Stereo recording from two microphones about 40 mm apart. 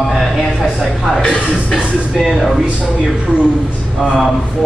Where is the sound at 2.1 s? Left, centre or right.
Centre.